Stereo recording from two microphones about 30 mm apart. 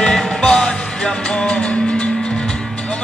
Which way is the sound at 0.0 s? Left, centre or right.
Left.